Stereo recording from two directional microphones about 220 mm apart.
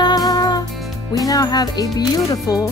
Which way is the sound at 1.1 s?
15° left (ahead or behind).